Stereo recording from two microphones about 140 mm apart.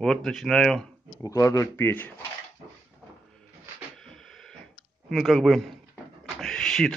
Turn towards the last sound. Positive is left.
turn(degrees=5)  # may be behind; listen again after turning